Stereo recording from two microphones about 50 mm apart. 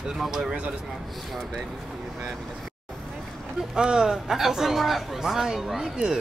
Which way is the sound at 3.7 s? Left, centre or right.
Centre.